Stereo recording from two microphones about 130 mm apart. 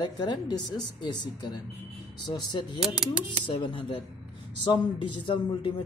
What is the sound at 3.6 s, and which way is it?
Speech, 40° left (ahead or behind).